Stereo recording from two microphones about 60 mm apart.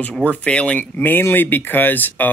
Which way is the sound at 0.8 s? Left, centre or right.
Left.